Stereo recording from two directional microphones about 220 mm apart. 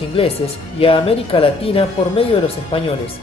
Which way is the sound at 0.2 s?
25° left (ahead or behind).